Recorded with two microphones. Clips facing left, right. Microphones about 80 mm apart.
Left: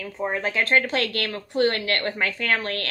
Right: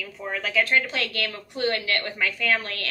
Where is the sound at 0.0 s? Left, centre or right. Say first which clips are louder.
Left 4 dB; left.